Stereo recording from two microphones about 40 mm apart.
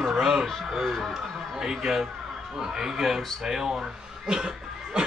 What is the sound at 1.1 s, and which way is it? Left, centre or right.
A man's voice, centre.